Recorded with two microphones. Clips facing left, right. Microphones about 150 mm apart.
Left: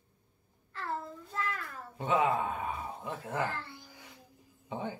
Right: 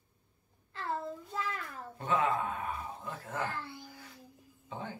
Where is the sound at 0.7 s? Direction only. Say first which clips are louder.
Right 1 dB; 20° right (ahead or behind).